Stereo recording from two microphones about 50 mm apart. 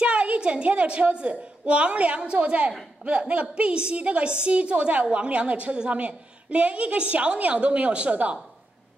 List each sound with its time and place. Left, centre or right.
0.0 s a woman's voice: right